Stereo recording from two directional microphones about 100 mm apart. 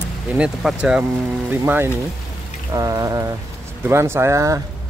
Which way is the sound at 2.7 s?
35° right (ahead or behind).